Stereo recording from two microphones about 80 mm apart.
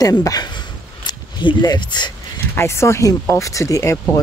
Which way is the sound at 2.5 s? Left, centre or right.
Left.